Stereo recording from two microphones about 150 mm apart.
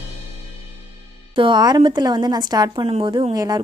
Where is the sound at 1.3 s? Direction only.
30° right (ahead or behind).